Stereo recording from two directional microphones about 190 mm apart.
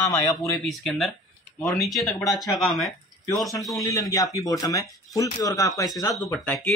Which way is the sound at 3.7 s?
20° left (ahead or behind).